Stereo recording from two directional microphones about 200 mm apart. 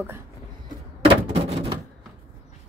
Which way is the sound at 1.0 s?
30° right (ahead or behind).